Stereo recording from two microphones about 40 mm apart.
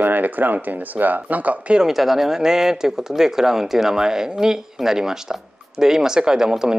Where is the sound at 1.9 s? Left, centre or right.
Centre.